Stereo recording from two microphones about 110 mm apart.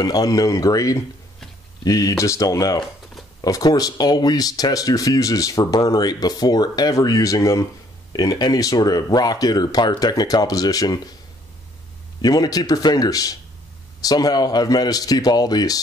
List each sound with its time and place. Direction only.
0.0 s speech: 35° left (ahead or behind)
12.2 s speech: 35° left (ahead or behind)